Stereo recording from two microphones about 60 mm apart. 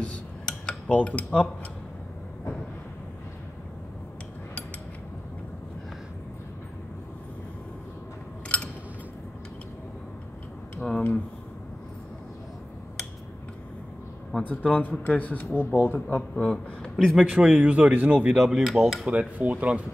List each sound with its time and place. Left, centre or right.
0.0 s cutlery: centre
8.5 s a sound: centre
10.8 s a sound: centre
14.4 s speech: left
16.3 s speech: centre
16.9 s dishes: centre
17.5 s speech: right
18.3 s dishes: centre
19.1 s speech: centre